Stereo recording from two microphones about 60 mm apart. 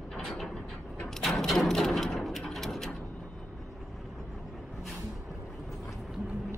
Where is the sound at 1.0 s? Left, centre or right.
Centre.